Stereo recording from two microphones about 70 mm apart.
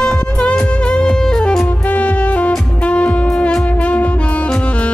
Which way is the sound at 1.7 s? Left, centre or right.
Left.